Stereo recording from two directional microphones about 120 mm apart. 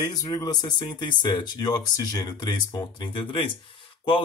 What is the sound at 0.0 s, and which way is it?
Speech, 25° left (ahead or behind).